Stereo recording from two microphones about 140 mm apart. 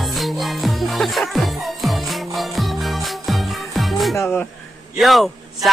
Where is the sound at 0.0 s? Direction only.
Centre (ahead or behind).